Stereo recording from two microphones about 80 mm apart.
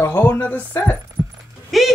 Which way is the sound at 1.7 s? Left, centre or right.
Centre.